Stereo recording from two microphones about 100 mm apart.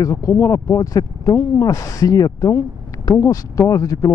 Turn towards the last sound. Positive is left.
turn(degrees=35)  # may be behind; listen again after turning